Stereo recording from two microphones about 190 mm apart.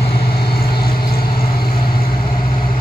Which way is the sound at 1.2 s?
30° left (ahead or behind).